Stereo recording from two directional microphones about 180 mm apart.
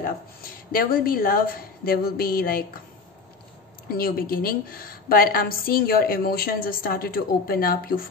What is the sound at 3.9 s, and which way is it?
A woman's voice, 55° left (ahead or behind).